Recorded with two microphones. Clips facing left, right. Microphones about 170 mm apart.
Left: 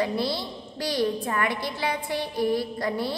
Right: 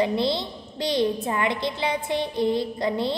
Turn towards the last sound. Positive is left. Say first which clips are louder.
# right 3 dB
turn(degrees=-20)  # may be behind; listen again after turning